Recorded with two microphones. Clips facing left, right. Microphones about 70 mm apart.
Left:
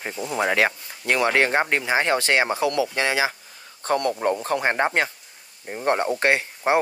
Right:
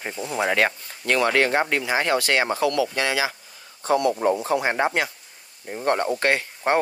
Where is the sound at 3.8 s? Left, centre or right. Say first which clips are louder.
Right 2 dB; left.